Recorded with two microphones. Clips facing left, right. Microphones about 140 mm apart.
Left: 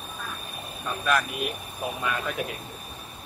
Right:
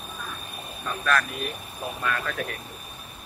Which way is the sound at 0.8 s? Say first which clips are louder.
Even; 15° left (ahead or behind).